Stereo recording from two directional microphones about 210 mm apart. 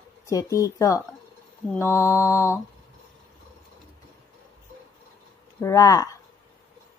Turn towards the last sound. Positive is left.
turn(degrees=15)  # may be behind; listen again after turning